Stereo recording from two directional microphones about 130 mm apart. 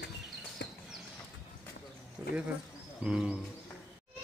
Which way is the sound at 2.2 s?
15° right (ahead or behind).